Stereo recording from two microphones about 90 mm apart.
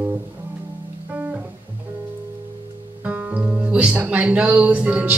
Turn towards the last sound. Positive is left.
turn(degrees=-15)  # may be behind; listen again after turning